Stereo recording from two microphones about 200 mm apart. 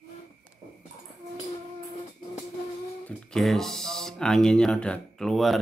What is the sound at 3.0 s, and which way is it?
Speech, 5° left (ahead or behind).